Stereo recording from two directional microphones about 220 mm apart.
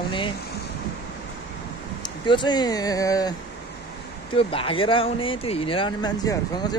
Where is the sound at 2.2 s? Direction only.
20° left (ahead or behind).